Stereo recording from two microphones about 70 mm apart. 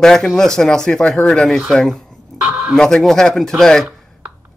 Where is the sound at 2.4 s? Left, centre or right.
Right.